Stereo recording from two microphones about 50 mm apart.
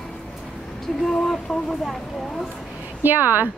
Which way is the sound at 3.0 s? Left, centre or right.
Right.